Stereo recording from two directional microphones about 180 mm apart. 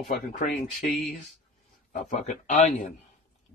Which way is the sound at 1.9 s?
40° left (ahead or behind).